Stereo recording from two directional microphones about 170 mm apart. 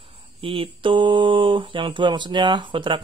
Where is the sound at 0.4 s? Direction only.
30° right (ahead or behind).